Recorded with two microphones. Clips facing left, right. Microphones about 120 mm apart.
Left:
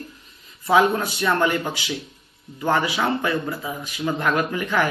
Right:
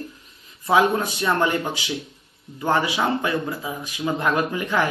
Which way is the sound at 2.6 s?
15° right (ahead or behind).